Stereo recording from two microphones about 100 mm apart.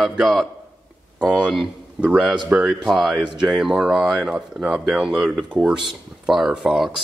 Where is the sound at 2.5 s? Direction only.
Centre (ahead or behind).